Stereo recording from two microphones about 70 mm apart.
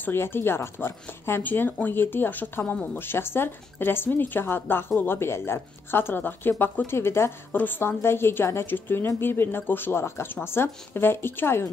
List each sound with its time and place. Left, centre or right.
0.0 s speech: left
1.4 s speech: left